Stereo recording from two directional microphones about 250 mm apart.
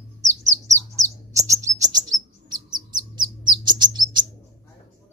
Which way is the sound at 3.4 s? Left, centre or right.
Centre.